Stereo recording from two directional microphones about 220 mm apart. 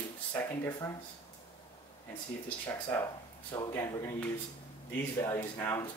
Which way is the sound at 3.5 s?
15° left (ahead or behind).